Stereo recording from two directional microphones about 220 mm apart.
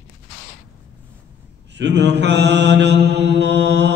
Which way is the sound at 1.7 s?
50° right (ahead or behind).